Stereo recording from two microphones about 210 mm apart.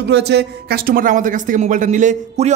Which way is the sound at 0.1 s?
50° right (ahead or behind).